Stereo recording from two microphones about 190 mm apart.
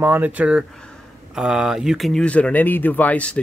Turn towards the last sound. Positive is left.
turn(degrees=5)  # may be behind; listen again after turning